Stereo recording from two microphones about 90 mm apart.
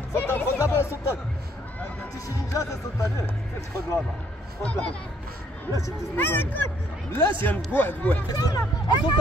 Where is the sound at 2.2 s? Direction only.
35° left (ahead or behind).